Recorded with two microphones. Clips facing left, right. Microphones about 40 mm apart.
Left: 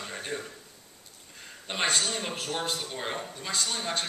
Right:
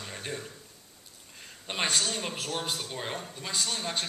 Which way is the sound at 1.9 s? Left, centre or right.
Centre.